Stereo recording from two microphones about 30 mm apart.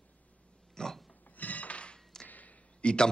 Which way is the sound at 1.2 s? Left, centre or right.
Left.